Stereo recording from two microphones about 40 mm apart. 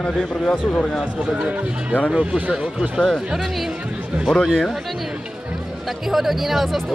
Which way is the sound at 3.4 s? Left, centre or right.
Centre.